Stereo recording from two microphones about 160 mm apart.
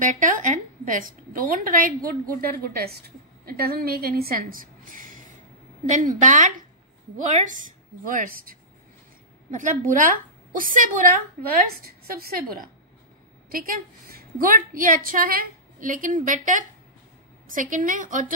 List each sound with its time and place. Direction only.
0.0 s a woman's voice: 55° right (ahead or behind)
2.7 s a woman's voice: 75° right (ahead or behind)
9.5 s a woman's voice: 50° right (ahead or behind)